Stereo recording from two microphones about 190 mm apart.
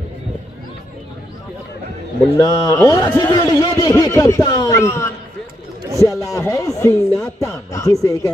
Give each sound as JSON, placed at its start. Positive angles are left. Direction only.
{"t": 2.3, "sound": "a man's voice", "side_deg": 20}